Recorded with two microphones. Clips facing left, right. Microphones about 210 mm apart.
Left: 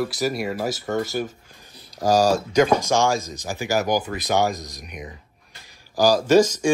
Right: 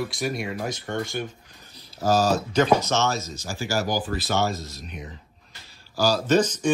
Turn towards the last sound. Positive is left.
turn(degrees=10)  # may be behind; listen again after turning